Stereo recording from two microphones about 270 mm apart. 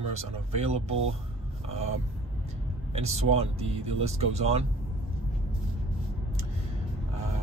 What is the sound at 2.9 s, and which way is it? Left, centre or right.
Speech, right.